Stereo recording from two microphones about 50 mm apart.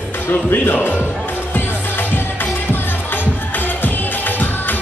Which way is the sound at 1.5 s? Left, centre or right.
Left.